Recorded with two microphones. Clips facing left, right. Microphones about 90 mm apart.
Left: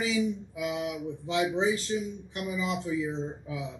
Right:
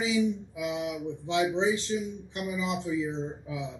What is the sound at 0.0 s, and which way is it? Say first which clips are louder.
A man's voice: right 2 dB; centre (ahead or behind).